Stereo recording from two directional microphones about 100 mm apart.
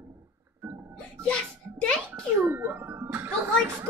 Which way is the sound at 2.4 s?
20° right (ahead or behind).